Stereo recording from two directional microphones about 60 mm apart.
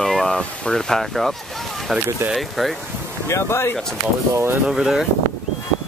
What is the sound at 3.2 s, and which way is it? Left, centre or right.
Speech, left.